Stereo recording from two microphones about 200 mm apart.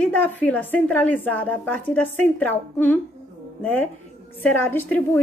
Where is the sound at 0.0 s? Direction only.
10° left (ahead or behind).